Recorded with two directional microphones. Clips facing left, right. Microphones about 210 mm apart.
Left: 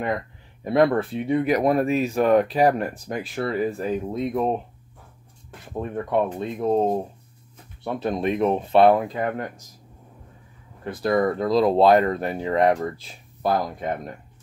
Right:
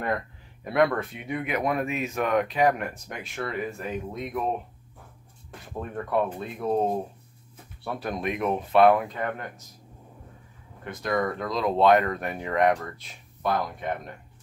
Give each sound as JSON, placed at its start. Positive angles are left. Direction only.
{"t": 0.7, "sound": "speech", "side_deg": 30}
{"t": 5.7, "sound": "speech", "side_deg": 20}
{"t": 10.8, "sound": "speech", "side_deg": 35}